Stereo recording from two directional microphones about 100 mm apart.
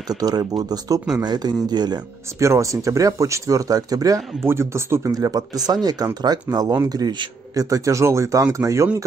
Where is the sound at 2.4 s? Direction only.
30° right (ahead or behind).